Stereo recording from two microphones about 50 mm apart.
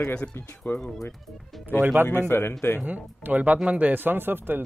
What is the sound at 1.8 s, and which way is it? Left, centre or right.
Speech, right.